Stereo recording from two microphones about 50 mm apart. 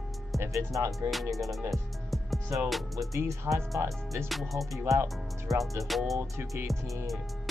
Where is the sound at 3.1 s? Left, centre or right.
Right.